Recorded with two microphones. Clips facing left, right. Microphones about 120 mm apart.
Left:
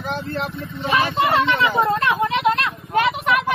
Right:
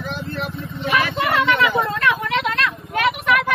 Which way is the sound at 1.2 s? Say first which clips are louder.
Right 1 dB; 25° left (ahead or behind).